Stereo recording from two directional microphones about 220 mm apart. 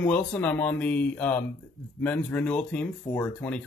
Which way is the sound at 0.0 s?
5° left (ahead or behind).